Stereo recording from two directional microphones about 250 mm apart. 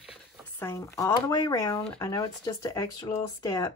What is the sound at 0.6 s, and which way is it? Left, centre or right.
Speech, centre.